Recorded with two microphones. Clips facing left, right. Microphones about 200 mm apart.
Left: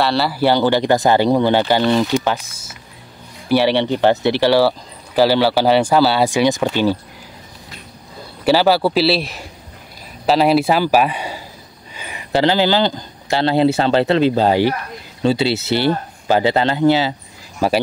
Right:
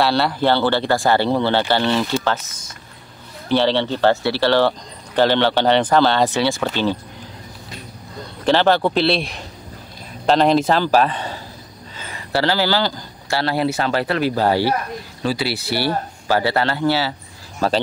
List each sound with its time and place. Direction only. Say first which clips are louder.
0.0 s speech: left 1 dB; centre (ahead or behind)
8.2 s speech: left 2 dB; 10° left (ahead or behind)